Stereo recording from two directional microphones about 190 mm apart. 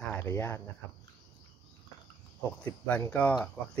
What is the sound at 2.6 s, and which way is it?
Speech, 5° left (ahead or behind).